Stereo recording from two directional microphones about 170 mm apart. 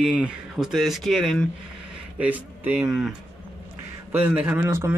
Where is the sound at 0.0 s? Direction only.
5° right (ahead or behind).